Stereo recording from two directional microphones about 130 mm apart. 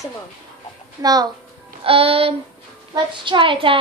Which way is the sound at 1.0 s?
30° right (ahead or behind).